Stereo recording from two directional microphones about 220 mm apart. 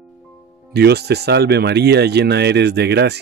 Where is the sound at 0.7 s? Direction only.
50° right (ahead or behind).